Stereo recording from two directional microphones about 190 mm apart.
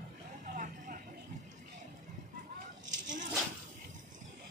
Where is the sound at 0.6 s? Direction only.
45° right (ahead or behind).